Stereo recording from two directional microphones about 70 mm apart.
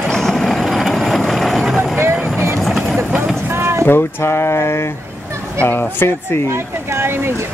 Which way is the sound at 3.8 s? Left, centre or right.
Left.